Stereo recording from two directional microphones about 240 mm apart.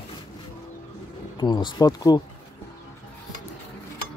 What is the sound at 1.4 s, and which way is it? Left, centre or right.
Speech, centre.